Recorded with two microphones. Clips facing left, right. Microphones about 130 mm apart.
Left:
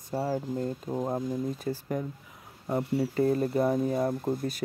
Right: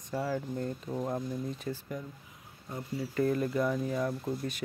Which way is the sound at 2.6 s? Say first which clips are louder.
Left 9 dB; 70° left (ahead or behind).